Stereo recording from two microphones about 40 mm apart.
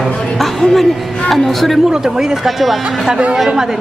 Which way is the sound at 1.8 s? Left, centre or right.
Centre.